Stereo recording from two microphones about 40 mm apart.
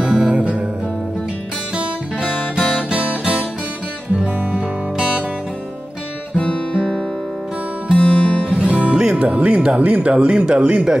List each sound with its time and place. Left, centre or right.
0.0 s music: right
2.9 s music: right
6.3 s guitar: left
8.0 s music: left
8.5 s music: right
9.2 s speech: right